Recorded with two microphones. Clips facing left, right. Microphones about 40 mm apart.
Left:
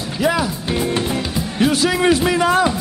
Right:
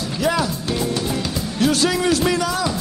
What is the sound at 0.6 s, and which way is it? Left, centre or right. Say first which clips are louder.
Music: left 2 dB; left.